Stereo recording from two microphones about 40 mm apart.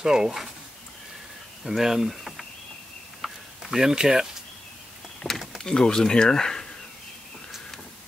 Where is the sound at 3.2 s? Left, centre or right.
Centre.